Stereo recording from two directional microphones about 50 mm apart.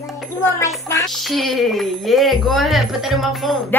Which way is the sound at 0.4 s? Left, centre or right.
Left.